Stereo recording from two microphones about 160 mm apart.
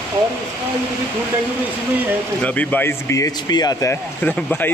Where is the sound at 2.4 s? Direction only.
10° left (ahead or behind).